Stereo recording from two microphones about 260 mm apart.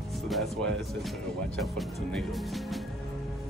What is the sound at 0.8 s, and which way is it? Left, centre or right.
Speech, centre.